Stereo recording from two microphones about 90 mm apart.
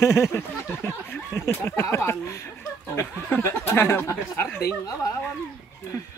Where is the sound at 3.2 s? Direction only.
20° left (ahead or behind).